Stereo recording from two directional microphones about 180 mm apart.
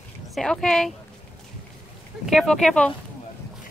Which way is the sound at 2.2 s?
Centre (ahead or behind).